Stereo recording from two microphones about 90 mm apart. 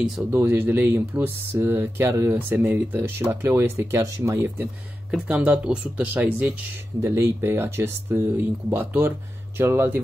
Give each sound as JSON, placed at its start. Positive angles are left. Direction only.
{"t": 0.3, "sound": "speech", "side_deg": -25}
{"t": 5.1, "sound": "speech", "side_deg": -15}